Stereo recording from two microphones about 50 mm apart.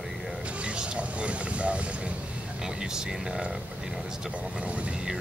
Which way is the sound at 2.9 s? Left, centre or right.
Centre.